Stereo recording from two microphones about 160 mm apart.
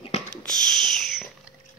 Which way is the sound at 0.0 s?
45° left (ahead or behind).